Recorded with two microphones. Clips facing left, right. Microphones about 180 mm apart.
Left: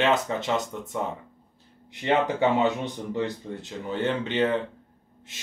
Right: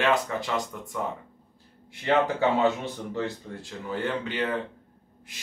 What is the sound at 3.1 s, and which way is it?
Speech, 20° left (ahead or behind).